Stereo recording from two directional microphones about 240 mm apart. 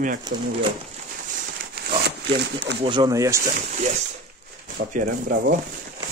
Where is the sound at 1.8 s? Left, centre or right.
Right.